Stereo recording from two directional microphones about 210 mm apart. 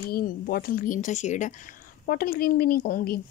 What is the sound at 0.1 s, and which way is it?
Speech, 45° left (ahead or behind).